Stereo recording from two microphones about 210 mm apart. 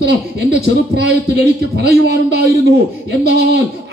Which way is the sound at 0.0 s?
50° right (ahead or behind).